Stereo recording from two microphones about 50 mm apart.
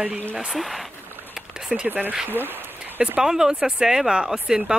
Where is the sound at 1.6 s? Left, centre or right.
Centre.